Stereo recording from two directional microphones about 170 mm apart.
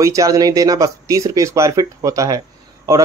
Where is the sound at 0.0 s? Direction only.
20° right (ahead or behind).